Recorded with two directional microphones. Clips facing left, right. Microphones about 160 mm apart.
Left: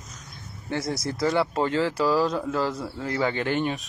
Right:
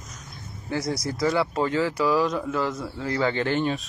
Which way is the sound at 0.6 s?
25° left (ahead or behind).